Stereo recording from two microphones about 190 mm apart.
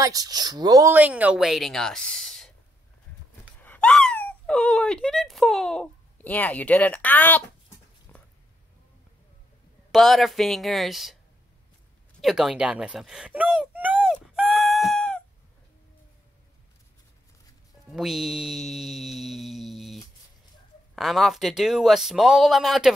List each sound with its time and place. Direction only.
0.0 s speech: 20° right (ahead or behind)
0.9 s speech: 10° right (ahead or behind)
3.6 s speech: 5° left (ahead or behind)
8.1 s a sound: 10° left (ahead or behind)
9.8 s speech: centre (ahead or behind)
12.2 s a sound: centre (ahead or behind)
17.9 s speech: centre (ahead or behind)